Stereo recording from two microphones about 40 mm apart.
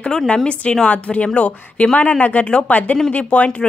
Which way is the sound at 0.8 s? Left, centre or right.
Left.